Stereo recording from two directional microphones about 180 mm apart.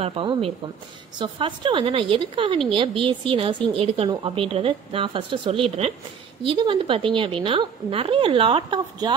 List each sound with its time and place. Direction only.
0.0 s a woman's voice: 30° right (ahead or behind)